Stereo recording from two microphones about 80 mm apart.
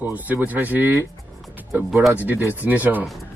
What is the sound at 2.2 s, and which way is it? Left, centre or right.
Speech, right.